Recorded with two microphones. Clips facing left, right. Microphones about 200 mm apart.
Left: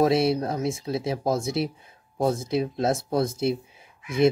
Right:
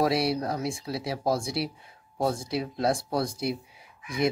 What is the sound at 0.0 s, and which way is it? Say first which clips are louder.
Speech: left 4 dB; 25° left (ahead or behind).